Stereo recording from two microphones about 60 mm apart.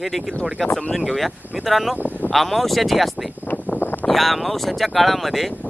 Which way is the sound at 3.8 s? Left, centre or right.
Left.